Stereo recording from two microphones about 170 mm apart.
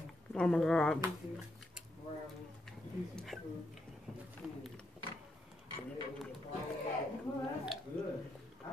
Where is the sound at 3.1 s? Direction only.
Centre (ahead or behind).